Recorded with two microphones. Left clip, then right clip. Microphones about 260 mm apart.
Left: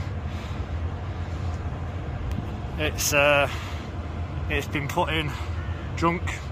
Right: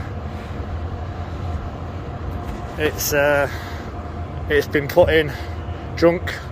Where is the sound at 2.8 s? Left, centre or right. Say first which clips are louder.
Right 3 dB; centre.